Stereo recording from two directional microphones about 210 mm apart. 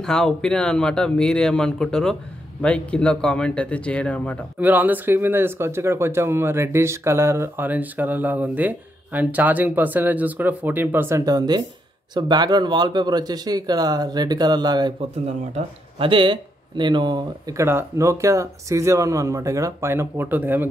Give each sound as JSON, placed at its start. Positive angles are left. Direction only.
{"t": 0.0, "sound": "speech", "side_deg": 5}
{"t": 4.6, "sound": "speech", "side_deg": -10}